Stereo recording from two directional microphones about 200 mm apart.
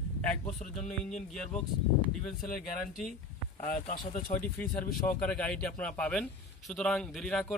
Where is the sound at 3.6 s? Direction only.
40° left (ahead or behind).